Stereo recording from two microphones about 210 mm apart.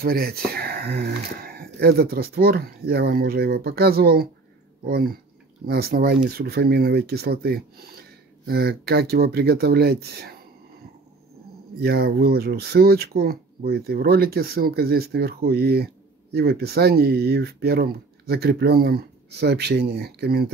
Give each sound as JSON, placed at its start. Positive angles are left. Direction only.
{"t": 0.0, "sound": "speech", "side_deg": -45}
{"t": 11.8, "sound": "speech", "side_deg": -50}